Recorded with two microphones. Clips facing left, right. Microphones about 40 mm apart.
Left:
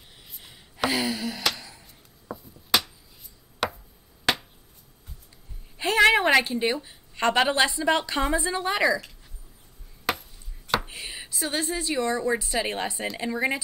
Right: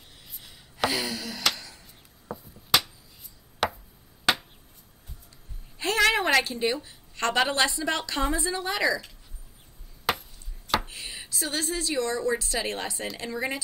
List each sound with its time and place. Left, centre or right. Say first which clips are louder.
0.8 s speech: left 2 dB; centre
1.4 s a sound: even; centre
2.2 s finger snapping: even; centre
5.8 s a woman's voice: left 4 dB; centre
10.9 s a sound: left 1 dB; centre
12.0 s speech: left 2 dB; centre